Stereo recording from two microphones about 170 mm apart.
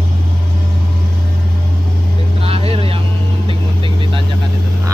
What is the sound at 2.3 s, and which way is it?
Vehicle, 35° right (ahead or behind).